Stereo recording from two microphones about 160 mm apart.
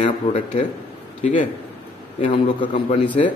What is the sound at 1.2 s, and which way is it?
Speech, 50° left (ahead or behind).